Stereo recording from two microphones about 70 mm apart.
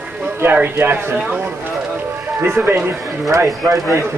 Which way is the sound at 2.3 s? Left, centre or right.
Right.